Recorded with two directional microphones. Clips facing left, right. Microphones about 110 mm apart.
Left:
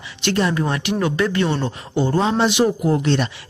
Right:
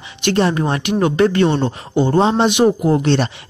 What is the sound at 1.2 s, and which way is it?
Speech, 55° right (ahead or behind).